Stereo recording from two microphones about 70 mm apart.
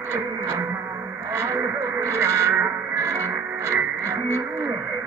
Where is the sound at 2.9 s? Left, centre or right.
Right.